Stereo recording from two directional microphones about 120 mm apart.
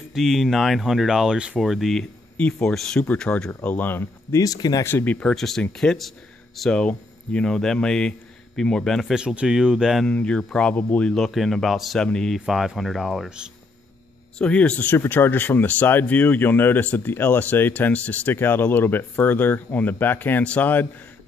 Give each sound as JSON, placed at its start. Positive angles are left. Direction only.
{"t": 0.1, "sound": "speech", "side_deg": 0}
{"t": 4.8, "sound": "speech", "side_deg": 15}
{"t": 5.3, "sound": "speech", "side_deg": 5}
{"t": 10.0, "sound": "speech", "side_deg": 10}
{"t": 14.4, "sound": "speech", "side_deg": 10}